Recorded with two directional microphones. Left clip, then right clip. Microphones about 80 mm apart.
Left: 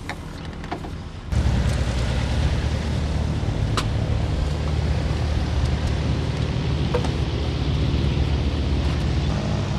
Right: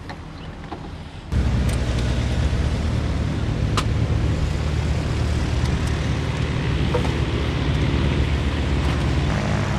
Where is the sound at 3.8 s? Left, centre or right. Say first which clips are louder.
Right 1 dB; centre.